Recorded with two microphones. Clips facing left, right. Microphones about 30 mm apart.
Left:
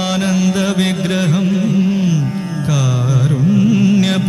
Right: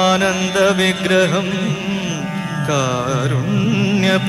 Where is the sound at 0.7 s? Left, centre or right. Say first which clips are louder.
Right 2 dB; right.